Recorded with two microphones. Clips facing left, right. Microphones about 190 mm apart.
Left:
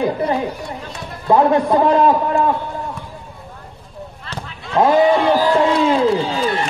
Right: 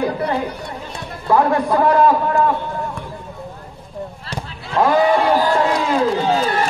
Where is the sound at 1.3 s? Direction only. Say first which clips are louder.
Left 2 dB; 20° left (ahead or behind).